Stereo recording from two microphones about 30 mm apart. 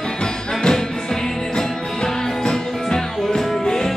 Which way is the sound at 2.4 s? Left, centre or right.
Left.